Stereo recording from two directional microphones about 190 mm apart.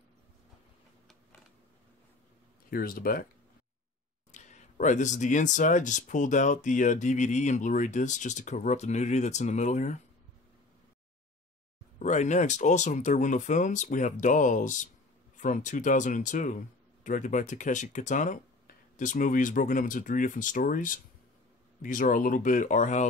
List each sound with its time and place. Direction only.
2.7 s speech: 50° left (ahead or behind)
4.3 s speech: 40° left (ahead or behind)
12.0 s speech: 40° left (ahead or behind)